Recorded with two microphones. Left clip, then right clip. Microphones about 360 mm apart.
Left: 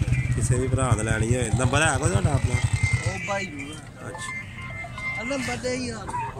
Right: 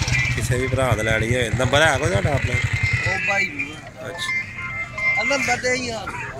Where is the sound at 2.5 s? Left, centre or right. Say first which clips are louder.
Right 7 dB; centre.